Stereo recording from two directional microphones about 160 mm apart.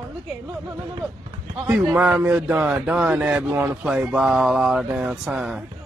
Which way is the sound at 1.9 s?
10° right (ahead or behind).